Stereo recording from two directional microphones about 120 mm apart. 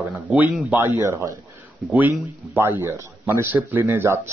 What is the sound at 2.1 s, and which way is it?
Speech, 20° right (ahead or behind).